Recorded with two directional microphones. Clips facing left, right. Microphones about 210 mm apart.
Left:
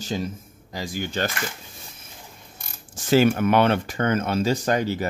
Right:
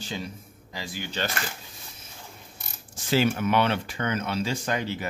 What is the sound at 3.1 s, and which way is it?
Speech, 50° left (ahead or behind).